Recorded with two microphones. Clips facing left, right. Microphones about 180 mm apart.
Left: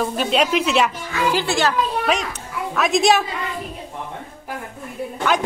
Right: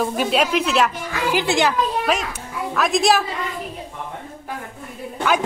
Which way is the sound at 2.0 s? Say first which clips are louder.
Even; centre (ahead or behind).